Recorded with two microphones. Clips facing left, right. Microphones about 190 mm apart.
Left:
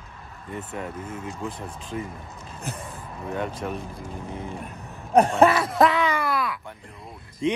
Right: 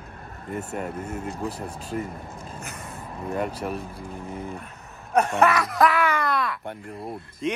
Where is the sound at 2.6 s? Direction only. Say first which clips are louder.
Left 3 dB; 30° left (ahead or behind).